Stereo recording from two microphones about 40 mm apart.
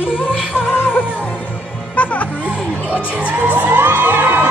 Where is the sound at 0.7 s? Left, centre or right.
Left.